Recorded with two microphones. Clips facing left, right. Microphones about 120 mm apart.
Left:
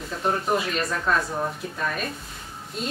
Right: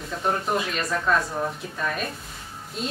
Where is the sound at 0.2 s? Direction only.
Centre (ahead or behind).